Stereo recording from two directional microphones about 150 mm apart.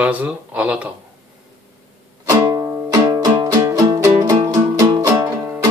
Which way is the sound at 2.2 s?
20° right (ahead or behind).